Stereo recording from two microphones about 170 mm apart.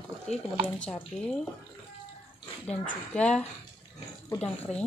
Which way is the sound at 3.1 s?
5° left (ahead or behind).